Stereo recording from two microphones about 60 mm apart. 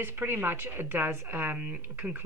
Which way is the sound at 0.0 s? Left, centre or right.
Right.